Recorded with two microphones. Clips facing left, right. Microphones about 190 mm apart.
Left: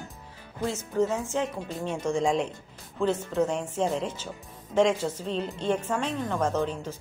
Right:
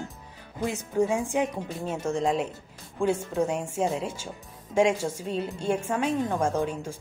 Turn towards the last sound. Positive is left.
turn(degrees=-10)  # may be behind; listen again after turning